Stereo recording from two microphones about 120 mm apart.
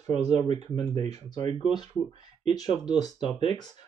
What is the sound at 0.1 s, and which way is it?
Speech, 65° right (ahead or behind).